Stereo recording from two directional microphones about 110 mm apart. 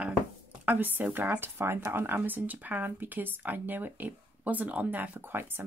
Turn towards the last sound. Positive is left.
turn(degrees=-20)  # may be behind; listen again after turning